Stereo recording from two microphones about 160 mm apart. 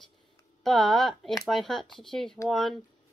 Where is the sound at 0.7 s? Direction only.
Centre (ahead or behind).